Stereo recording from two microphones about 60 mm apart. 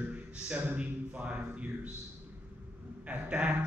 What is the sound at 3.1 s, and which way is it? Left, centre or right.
Speech, right.